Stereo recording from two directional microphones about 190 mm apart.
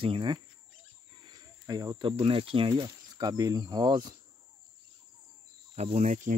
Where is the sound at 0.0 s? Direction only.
25° right (ahead or behind).